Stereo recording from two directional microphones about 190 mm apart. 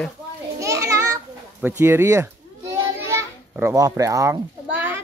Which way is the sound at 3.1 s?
15° right (ahead or behind).